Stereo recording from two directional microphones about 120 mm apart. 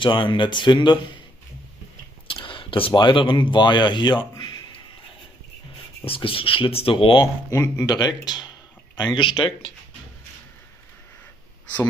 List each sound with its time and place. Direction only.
0.0 s speech: 40° left (ahead or behind)
2.2 s speech: 45° left (ahead or behind)
6.0 s speech: 50° left (ahead or behind)
7.5 s speech: 25° left (ahead or behind); by 9.5 s 40° left (ahead or behind)